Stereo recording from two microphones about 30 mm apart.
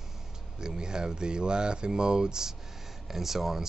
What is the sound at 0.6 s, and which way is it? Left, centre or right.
Speech, right.